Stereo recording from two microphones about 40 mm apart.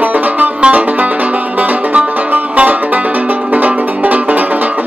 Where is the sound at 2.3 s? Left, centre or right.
Right.